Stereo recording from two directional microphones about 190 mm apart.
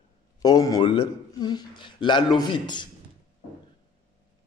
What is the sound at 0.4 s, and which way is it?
A man's voice, 20° left (ahead or behind).